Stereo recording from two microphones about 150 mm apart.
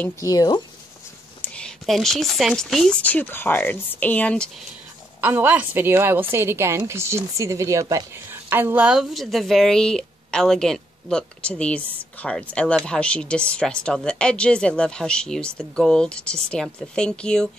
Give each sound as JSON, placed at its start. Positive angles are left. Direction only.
{"t": 0.2, "sound": "speech", "side_deg": 25}
{"t": 1.4, "sound": "speech", "side_deg": 5}
{"t": 5.2, "sound": "a woman's voice", "side_deg": -15}